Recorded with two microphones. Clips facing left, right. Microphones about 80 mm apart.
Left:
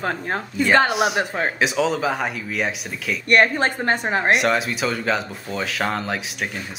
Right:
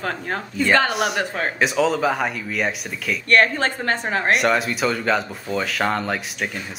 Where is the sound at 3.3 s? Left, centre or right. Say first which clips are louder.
Left 1 dB; centre.